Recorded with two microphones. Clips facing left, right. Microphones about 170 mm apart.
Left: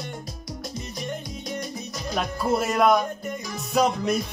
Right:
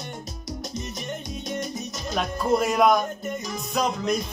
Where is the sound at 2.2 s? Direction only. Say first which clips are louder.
Right 2 dB; centre (ahead or behind).